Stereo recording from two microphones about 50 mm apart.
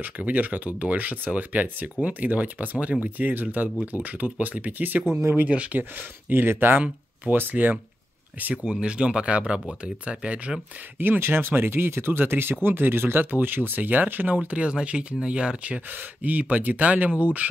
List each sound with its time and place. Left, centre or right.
0.0 s speech: right
5.1 s speech: right
5.4 s speech: right
8.6 s speech: centre
11.0 s speech: right
15.9 s speech: right